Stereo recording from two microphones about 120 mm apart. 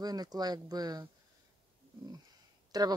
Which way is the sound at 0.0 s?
35° right (ahead or behind).